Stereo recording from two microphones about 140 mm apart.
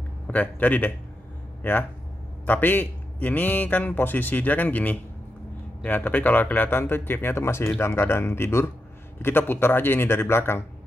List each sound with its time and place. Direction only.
0.3 s a man's voice: 10° left (ahead or behind)